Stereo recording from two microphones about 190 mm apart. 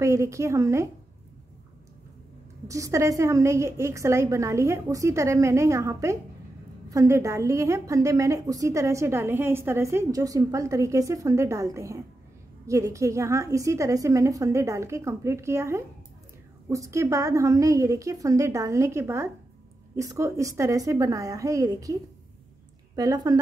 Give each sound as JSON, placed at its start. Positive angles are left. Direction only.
{"t": 0.0, "sound": "a woman's voice", "side_deg": -15}
{"t": 2.7, "sound": "a woman's voice", "side_deg": -15}
{"t": 22.9, "sound": "a woman's voice", "side_deg": -20}